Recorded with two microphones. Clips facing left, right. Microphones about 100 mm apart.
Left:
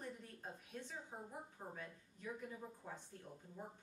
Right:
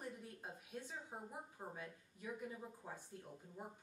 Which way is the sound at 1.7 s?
10° right (ahead or behind).